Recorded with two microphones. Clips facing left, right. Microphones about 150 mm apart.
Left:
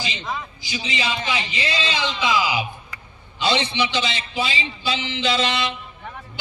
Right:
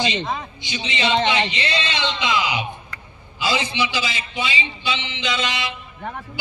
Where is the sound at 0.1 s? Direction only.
25° right (ahead or behind).